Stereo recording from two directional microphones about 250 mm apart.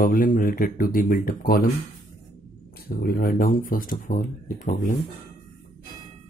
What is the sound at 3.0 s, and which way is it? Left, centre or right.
Speech, left.